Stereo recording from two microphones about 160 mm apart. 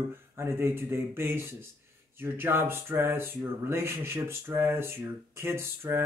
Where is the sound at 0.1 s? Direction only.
15° right (ahead or behind).